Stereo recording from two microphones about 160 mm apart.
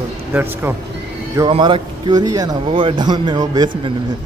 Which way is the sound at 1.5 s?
30° right (ahead or behind).